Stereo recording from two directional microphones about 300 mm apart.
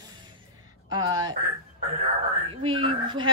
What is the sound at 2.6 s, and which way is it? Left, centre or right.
Speech, centre.